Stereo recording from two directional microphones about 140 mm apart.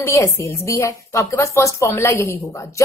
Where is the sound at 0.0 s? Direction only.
20° left (ahead or behind).